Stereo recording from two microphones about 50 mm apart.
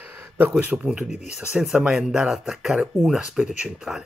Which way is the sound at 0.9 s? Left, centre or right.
Centre.